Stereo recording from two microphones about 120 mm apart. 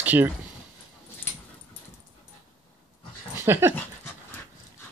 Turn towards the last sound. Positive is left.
turn(degrees=-20)  # may be behind; listen again after turning